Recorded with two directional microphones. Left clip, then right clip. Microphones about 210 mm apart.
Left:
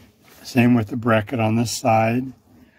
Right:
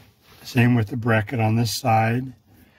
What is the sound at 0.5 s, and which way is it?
Speech, centre (ahead or behind).